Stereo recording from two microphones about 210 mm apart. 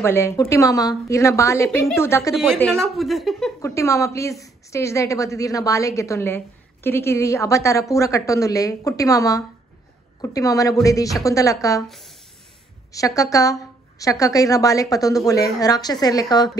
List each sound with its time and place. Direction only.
0.0 s a woman's voice: 10° left (ahead or behind)
2.3 s a woman's voice: centre (ahead or behind)
3.6 s a woman's voice: 15° left (ahead or behind)
12.9 s a woman's voice: 15° left (ahead or behind)